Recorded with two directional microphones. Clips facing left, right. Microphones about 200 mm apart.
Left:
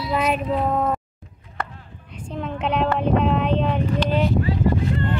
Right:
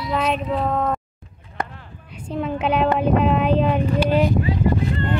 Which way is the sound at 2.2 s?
5° right (ahead or behind).